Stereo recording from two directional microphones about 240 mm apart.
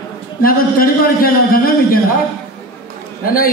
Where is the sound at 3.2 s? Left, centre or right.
Left.